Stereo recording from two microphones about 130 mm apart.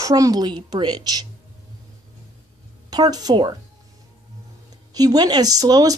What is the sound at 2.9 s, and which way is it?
Speech, 30° right (ahead or behind).